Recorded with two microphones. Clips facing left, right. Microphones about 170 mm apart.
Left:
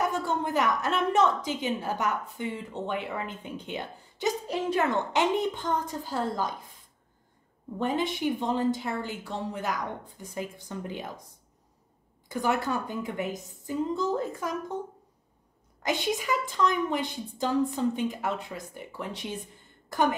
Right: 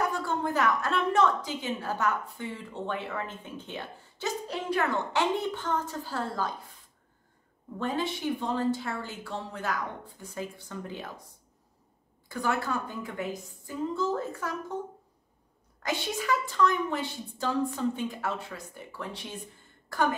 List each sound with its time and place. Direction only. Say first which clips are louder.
0.0 s a woman's voice: left 1 dB; 20° left (ahead or behind)
7.8 s a woman's voice: left 3 dB; 20° left (ahead or behind)
12.3 s a woman's voice: left 2 dB; 20° left (ahead or behind)
15.8 s a woman's voice: left 3 dB; 20° left (ahead or behind)
19.9 s throat clearing: left 2 dB; 20° left (ahead or behind)